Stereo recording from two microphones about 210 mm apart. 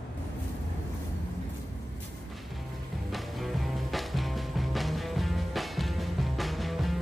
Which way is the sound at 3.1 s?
Centre (ahead or behind).